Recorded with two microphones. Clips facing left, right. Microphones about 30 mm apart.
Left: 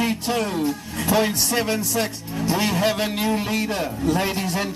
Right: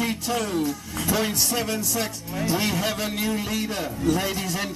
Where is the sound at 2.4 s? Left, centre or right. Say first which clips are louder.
Left 2 dB; left.